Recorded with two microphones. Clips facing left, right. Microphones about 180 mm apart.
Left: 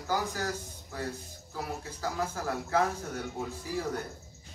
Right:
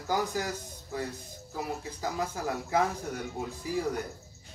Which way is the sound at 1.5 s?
15° right (ahead or behind).